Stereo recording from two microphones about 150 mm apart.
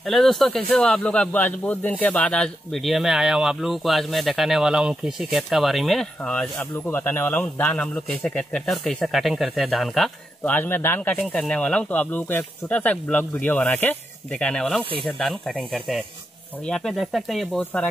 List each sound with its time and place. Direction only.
0.0 s speech: centre (ahead or behind)
10.5 s speech: 15° left (ahead or behind)